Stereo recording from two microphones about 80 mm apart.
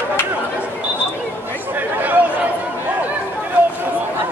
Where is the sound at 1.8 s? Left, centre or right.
Right.